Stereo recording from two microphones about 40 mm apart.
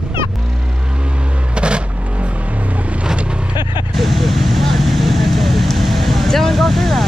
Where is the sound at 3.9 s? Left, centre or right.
Centre.